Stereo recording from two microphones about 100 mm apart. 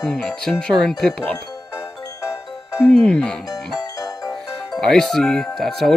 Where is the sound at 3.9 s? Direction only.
35° left (ahead or behind).